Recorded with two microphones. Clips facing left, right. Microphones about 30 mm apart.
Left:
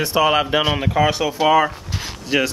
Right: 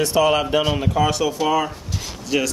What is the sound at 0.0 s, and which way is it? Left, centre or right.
Speech, centre.